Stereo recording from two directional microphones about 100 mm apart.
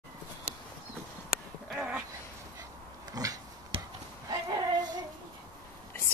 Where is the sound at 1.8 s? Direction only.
10° right (ahead or behind).